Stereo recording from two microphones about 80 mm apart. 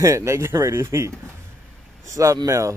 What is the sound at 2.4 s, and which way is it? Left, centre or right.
Speech, right.